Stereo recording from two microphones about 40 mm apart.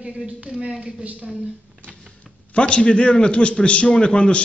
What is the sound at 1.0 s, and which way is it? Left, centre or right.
Speech, right.